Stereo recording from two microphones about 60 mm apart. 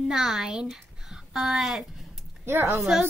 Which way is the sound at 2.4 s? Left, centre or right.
Right.